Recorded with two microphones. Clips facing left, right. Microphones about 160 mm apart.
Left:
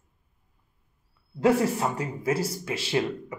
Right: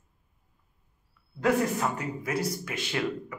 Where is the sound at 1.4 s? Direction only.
30° left (ahead or behind).